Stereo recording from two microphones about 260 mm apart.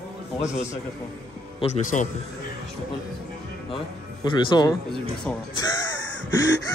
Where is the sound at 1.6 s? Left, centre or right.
Left.